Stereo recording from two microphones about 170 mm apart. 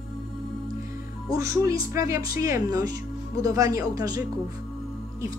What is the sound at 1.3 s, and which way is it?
Speech, 20° right (ahead or behind).